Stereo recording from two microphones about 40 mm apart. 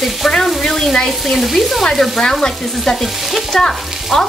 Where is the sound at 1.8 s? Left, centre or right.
Centre.